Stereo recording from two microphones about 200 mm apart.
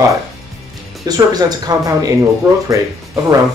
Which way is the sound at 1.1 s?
20° right (ahead or behind).